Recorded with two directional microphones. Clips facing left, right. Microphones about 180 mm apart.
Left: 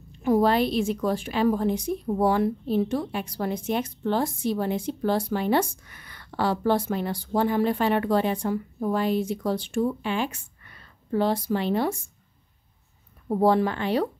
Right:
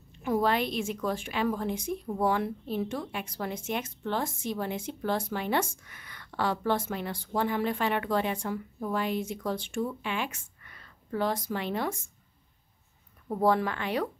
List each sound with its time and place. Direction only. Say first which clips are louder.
0.2 s a woman's voice: left 6 dB; 35° left (ahead or behind)
13.3 s a woman's voice: left 5 dB; 30° left (ahead or behind)